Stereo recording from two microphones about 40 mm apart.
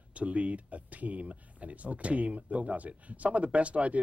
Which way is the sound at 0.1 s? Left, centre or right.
Right.